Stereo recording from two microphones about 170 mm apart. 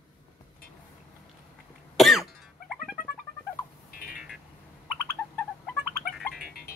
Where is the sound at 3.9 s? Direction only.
60° left (ahead or behind).